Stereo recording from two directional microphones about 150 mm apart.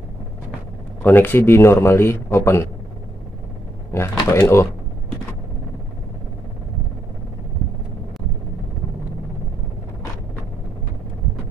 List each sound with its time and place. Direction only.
1.0 s a man's voice: 15° left (ahead or behind)
4.1 s a man's voice: 15° left (ahead or behind)